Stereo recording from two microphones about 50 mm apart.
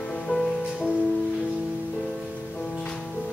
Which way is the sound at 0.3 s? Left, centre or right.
Centre.